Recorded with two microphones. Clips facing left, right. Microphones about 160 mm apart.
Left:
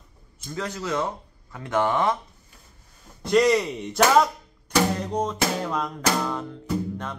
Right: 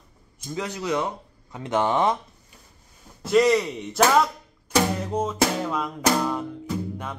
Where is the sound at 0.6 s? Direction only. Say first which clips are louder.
Right 1 dB; 15° right (ahead or behind).